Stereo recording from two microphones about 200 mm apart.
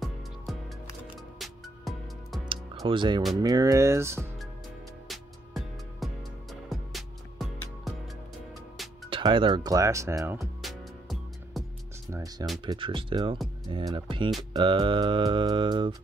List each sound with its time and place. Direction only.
0.5 s music: centre (ahead or behind)
2.4 s music: 25° right (ahead or behind)
3.3 s speech: 20° right (ahead or behind)
5.0 s music: centre (ahead or behind)
9.1 s speech: 25° right (ahead or behind)
10.4 s music: centre (ahead or behind)
12.1 s speech: 15° right (ahead or behind)